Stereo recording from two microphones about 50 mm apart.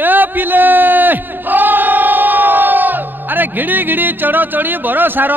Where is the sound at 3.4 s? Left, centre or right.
Right.